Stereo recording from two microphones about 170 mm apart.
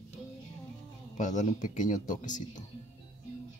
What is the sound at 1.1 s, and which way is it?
Speech, 45° left (ahead or behind).